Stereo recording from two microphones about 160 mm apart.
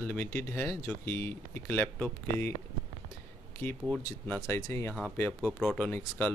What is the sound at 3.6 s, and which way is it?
Speech, 10° left (ahead or behind).